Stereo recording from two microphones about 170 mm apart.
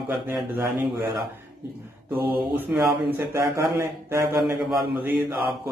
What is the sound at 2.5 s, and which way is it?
A man's voice, 10° right (ahead or behind).